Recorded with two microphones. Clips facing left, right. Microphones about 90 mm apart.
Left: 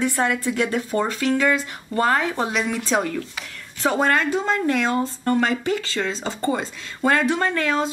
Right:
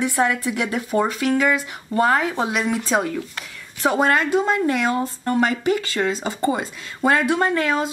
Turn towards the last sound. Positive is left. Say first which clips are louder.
# right 2 dB
turn(degrees=-10)  # may be behind; listen again after turning